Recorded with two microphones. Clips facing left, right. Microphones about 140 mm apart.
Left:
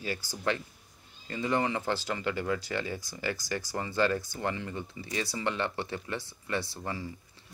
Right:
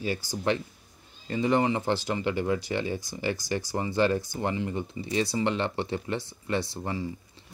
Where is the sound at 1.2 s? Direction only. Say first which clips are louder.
Right 5 dB; 25° right (ahead or behind).